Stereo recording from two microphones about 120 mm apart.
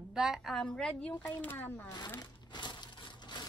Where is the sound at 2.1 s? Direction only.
40° left (ahead or behind).